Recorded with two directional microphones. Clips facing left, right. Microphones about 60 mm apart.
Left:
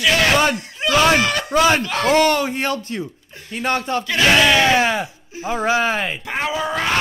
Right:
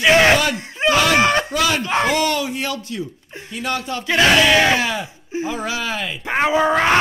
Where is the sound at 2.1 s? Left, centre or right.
Left.